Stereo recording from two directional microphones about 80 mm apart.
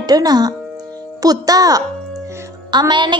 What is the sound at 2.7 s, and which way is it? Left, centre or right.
Speech, right.